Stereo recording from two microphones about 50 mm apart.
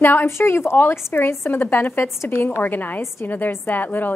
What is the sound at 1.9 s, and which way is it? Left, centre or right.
Speech, left.